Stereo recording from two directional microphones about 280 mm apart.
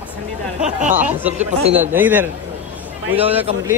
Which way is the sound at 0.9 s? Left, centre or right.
Centre.